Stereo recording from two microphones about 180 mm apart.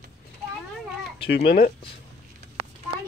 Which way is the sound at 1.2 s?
60° left (ahead or behind).